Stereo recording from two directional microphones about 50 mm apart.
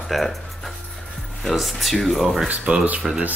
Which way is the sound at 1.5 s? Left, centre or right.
Centre.